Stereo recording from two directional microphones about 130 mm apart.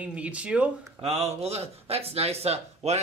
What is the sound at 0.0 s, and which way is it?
Speech, 10° right (ahead or behind).